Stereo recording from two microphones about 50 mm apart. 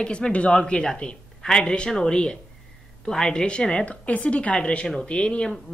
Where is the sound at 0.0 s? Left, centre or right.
Centre.